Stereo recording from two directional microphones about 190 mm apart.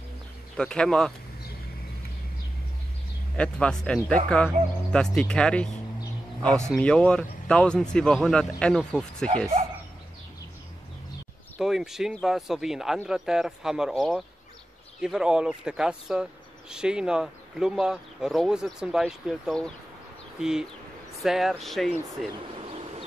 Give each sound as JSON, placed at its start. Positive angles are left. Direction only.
{"t": 0.6, "sound": "speech", "side_deg": 5}
{"t": 3.3, "sound": "speech", "side_deg": 5}
{"t": 6.7, "sound": "speech", "side_deg": 5}
{"t": 11.6, "sound": "speech", "side_deg": 0}